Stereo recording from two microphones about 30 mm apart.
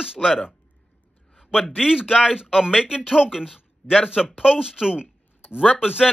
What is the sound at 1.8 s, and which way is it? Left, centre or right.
Speech, right.